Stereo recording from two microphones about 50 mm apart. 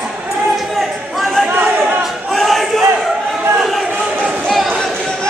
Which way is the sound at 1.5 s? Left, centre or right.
Right.